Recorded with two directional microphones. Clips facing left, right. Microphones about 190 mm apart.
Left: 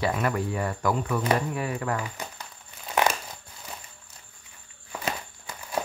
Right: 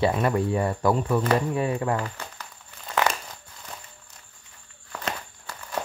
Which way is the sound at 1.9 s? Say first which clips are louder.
Right 2 dB; 15° left (ahead or behind).